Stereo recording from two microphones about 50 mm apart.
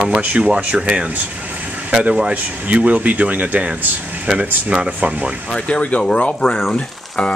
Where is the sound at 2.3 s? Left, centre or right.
Right.